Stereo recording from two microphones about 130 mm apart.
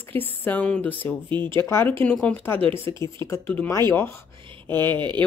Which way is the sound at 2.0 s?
10° left (ahead or behind).